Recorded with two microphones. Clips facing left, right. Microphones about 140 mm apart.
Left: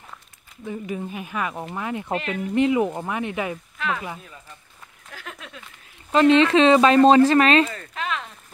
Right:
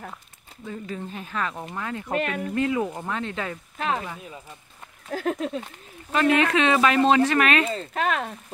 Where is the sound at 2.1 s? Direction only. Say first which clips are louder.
Right 4 dB; 45° right (ahead or behind).